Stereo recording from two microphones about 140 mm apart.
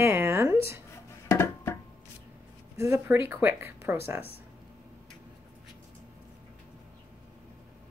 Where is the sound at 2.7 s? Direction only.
20° right (ahead or behind).